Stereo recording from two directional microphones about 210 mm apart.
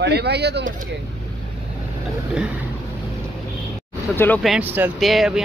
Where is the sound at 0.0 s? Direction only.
50° right (ahead or behind).